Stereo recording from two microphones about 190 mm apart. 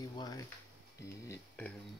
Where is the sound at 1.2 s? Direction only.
10° left (ahead or behind).